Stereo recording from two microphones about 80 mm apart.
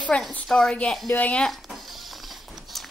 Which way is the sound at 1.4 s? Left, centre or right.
Centre.